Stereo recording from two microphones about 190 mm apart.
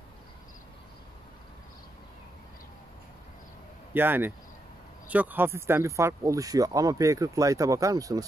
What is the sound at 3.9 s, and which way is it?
Speech, 10° right (ahead or behind).